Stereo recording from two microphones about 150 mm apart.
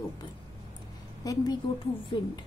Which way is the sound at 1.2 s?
25° left (ahead or behind).